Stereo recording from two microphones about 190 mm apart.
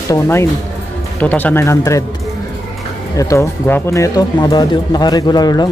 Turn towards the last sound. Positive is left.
turn(degrees=20)  # may be behind; listen again after turning